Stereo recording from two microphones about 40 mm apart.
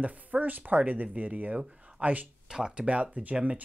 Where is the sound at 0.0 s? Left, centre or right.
Right.